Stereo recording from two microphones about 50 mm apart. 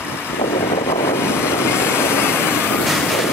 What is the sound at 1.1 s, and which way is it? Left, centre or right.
Vehicle, left.